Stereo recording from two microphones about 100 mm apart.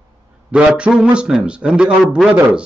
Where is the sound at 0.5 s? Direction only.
10° right (ahead or behind).